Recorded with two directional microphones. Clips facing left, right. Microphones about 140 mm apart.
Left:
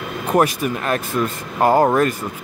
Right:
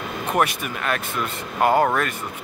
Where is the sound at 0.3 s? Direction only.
35° left (ahead or behind).